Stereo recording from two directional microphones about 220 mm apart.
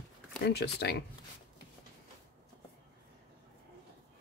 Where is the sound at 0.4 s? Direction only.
45° left (ahead or behind).